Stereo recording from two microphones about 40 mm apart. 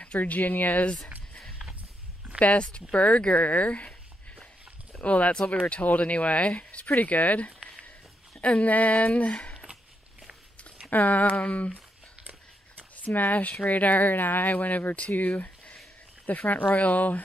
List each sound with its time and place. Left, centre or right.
0.0 s speech: left
2.4 s speech: left
5.0 s speech: left
10.9 s speech: left
12.9 s speech: left
15.3 s a sound: left
16.3 s speech: left